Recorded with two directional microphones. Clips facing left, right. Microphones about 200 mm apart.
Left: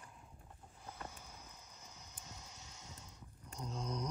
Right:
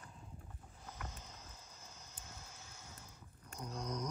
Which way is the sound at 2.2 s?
20° left (ahead or behind).